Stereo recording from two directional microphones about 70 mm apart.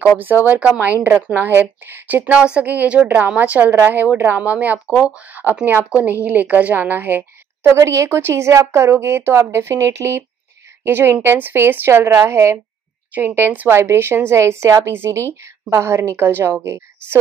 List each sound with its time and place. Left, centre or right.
0.5 s a woman's voice: right
13.1 s a woman's voice: right